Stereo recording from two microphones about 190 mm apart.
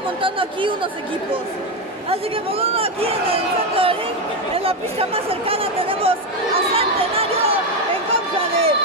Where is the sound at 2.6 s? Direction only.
30° right (ahead or behind).